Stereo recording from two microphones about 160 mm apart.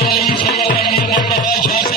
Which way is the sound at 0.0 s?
70° left (ahead or behind).